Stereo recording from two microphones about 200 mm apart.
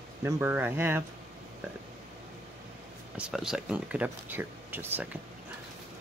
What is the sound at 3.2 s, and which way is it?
Speech, 5° right (ahead or behind).